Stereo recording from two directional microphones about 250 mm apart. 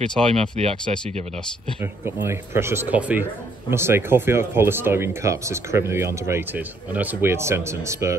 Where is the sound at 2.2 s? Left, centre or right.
Centre.